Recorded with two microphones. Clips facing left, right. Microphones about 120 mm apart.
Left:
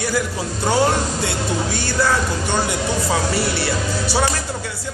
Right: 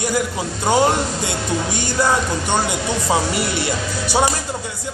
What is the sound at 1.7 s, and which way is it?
Speech, 15° right (ahead or behind).